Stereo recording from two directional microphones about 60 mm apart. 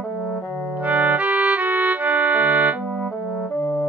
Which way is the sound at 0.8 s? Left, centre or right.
Right.